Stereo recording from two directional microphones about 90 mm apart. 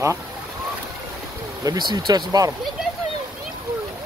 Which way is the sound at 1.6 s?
50° right (ahead or behind).